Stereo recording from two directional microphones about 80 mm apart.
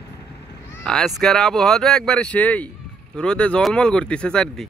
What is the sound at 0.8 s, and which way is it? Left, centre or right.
Speech, centre.